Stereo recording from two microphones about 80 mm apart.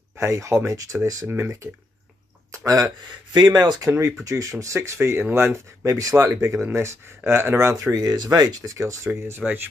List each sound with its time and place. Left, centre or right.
0.2 s speech: right
2.5 s a sound: right
3.3 s speech: right
4.2 s speech: right
5.9 s speech: right
8.7 s speech: right